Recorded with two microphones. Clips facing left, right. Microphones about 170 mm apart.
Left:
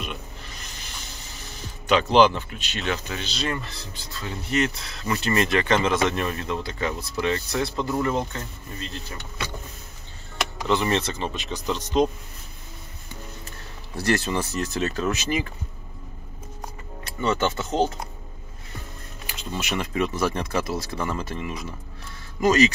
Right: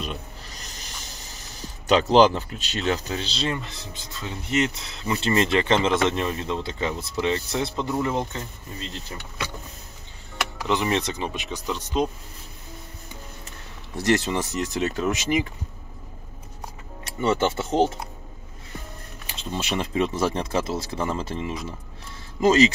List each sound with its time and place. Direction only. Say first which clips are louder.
0.0 s music: right 1 dB; 35° right (ahead or behind)
3.5 s speech: even; 20° right (ahead or behind)
10.7 s speech: left 1 dB; 15° right (ahead or behind)
13.9 s speech: right 1 dB; 20° right (ahead or behind)
17.2 s speech: right 2 dB; 30° right (ahead or behind)
19.8 s speech: right 1 dB; 25° right (ahead or behind)